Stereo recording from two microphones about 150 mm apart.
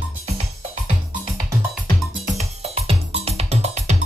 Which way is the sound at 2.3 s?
45° right (ahead or behind).